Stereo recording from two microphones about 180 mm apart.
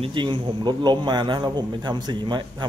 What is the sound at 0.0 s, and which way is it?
A man's voice, 25° right (ahead or behind).